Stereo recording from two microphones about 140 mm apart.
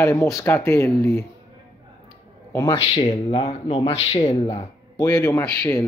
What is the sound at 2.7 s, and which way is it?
Speech, 40° left (ahead or behind).